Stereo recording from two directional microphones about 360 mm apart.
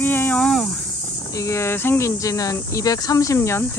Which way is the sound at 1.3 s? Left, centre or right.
Centre.